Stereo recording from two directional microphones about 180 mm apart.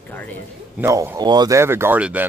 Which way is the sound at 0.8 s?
15° right (ahead or behind).